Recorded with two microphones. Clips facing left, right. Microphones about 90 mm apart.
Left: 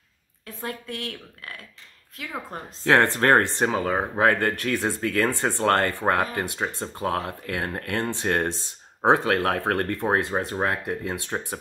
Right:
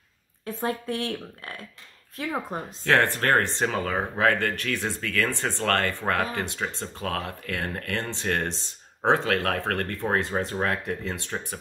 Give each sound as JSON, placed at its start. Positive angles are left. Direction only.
{"t": 0.5, "sound": "a woman's voice", "side_deg": -35}
{"t": 2.8, "sound": "speech", "side_deg": 25}
{"t": 11.3, "sound": "speech", "side_deg": 35}